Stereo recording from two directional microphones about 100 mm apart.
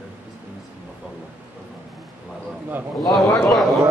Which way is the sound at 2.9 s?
Centre (ahead or behind).